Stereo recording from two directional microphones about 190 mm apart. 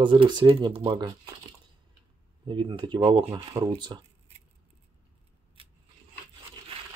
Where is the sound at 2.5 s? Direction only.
25° right (ahead or behind).